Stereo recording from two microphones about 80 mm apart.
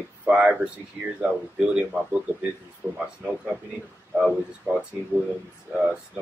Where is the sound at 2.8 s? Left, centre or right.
Right.